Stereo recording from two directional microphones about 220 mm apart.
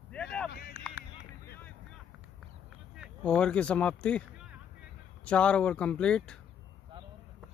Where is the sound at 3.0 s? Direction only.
5° left (ahead or behind).